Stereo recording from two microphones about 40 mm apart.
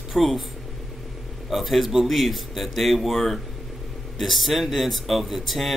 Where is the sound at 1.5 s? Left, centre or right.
Centre.